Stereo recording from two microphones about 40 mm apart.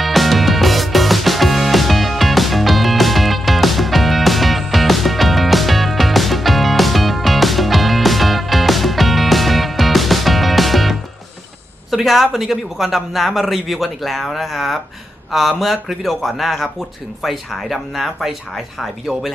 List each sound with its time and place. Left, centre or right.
0.0 s music: centre
11.9 s a man's voice: centre
17.9 s a man's voice: centre